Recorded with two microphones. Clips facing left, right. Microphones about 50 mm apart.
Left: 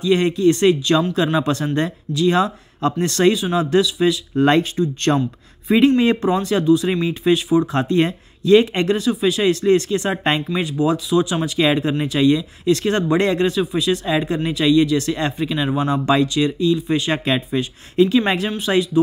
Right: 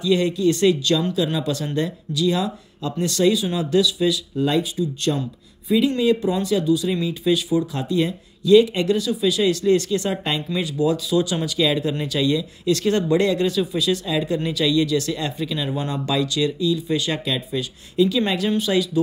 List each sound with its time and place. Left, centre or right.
0.0 s speech: left
4.4 s speech: left